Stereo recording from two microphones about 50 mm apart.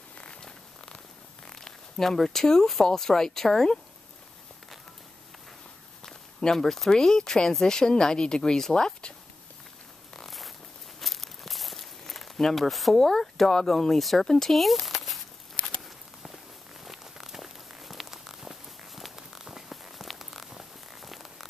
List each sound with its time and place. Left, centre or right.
0.2 s purr: centre
1.5 s speech: centre
6.0 s speech: centre
10.1 s a sound: centre
11.0 s walk: centre
12.9 s speech: centre
16.8 s a sound: centre